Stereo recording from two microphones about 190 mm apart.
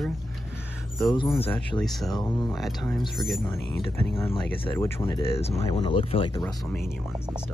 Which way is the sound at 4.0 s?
15° left (ahead or behind).